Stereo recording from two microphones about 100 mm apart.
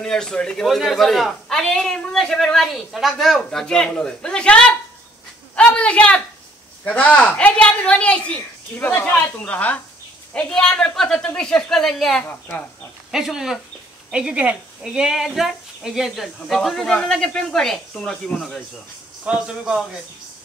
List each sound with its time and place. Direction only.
0.0 s a woman's voice: 5° left (ahead or behind)
5.6 s a sound: 10° left (ahead or behind)
6.8 s a woman's voice: 15° left (ahead or behind)
12.3 s a woman's voice: 20° left (ahead or behind)
13.1 s a woman's voice: 5° right (ahead or behind)
19.2 s a man's voice: 10° right (ahead or behind)